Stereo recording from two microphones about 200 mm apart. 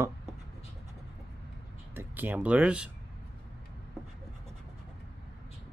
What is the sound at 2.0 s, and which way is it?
Speech, 10° right (ahead or behind).